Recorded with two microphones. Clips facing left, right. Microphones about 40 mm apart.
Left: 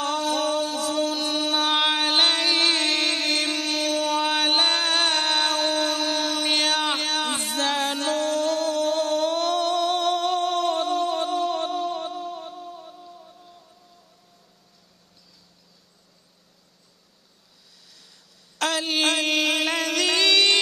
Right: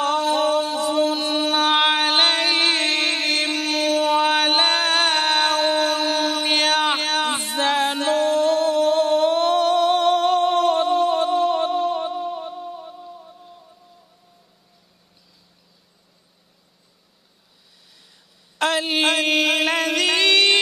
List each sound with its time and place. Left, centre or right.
0.0 s singing: centre
7.5 s music: centre
18.6 s a sound: centre